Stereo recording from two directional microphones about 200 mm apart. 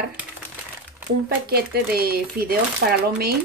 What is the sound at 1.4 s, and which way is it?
A woman's voice, 50° right (ahead or behind).